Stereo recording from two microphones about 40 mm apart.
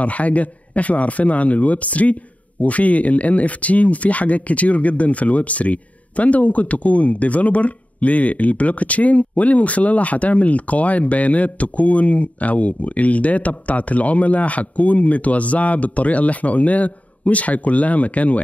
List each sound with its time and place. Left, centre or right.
0.0 s speech: left